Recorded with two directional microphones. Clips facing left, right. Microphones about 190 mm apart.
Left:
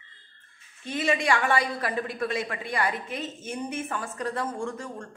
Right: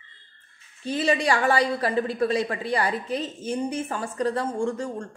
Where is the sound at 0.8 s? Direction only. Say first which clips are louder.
Right 3 dB; 35° right (ahead or behind).